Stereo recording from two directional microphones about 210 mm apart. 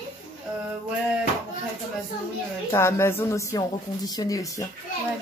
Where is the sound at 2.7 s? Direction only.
10° left (ahead or behind).